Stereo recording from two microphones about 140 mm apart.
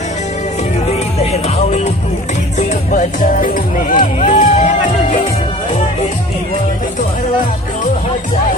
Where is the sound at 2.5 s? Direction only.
55° left (ahead or behind).